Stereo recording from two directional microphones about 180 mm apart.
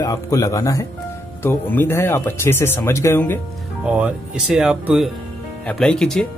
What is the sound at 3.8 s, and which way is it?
Speech, 5° right (ahead or behind).